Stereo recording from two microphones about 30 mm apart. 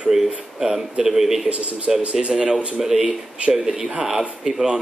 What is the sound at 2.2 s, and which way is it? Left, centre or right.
Speech, right.